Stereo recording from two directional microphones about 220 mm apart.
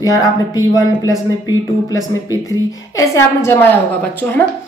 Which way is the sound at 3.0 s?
10° left (ahead or behind).